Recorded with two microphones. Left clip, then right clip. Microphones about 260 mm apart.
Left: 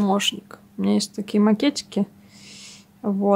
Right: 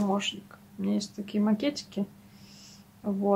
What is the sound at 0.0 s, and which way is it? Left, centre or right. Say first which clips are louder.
Speech: left 8 dB; left.